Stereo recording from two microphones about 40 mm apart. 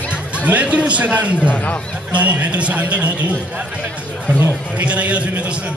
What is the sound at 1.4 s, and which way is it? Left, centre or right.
Speech, left.